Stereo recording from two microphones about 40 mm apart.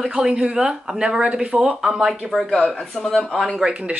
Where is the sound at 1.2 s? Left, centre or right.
Right.